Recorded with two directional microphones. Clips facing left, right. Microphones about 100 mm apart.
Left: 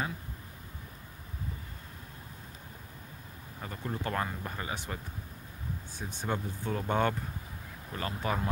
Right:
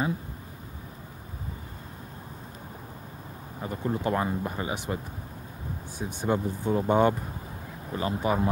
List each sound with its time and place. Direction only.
3.6 s speech: 20° right (ahead or behind)